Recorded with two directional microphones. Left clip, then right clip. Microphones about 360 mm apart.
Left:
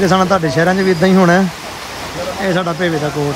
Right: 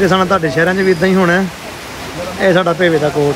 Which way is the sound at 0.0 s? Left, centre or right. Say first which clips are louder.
Right 1 dB; centre.